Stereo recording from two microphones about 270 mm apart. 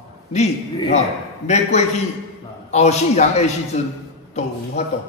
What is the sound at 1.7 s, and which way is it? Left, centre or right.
A man's voice, left.